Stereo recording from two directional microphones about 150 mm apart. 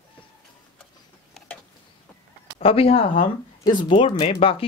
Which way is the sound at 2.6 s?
40° left (ahead or behind).